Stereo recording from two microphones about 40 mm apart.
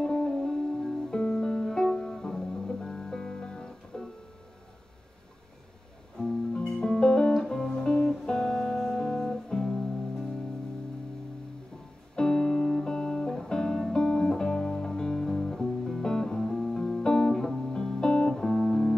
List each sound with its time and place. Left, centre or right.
0.0 s music: centre
6.2 s music: centre
12.2 s music: centre